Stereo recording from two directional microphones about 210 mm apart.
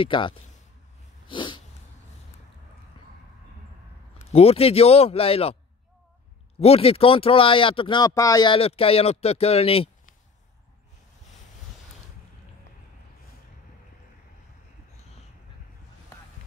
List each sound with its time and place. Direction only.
0.0 s speech: 25° left (ahead or behind)
1.3 s dog: 25° left (ahead or behind)
4.3 s speech: 30° left (ahead or behind)
6.6 s speech: 30° left (ahead or behind)